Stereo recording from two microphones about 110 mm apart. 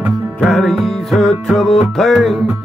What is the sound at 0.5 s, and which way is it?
Music, 5° left (ahead or behind).